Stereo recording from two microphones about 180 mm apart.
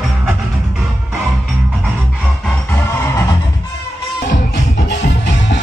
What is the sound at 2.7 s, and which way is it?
Music, 15° left (ahead or behind).